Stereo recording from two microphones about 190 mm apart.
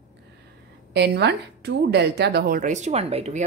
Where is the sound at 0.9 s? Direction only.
60° right (ahead or behind).